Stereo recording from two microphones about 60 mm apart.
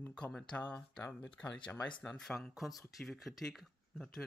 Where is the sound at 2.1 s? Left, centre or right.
Centre.